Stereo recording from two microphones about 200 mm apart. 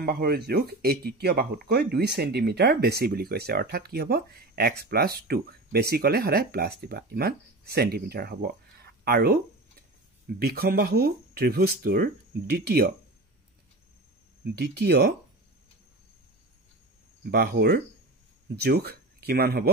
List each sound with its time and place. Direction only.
0.0 s speech: 50° right (ahead or behind)
10.4 s speech: 50° right (ahead or behind)
14.4 s speech: 55° right (ahead or behind)
17.2 s speech: 50° right (ahead or behind)